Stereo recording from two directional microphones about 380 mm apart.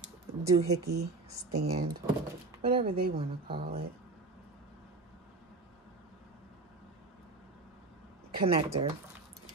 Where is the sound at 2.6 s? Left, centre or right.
Centre.